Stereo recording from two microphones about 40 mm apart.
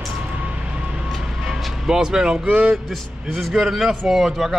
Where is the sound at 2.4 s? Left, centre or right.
Right.